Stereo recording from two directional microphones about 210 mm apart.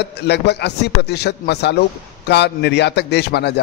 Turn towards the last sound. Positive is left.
turn(degrees=50)  # may be behind; listen again after turning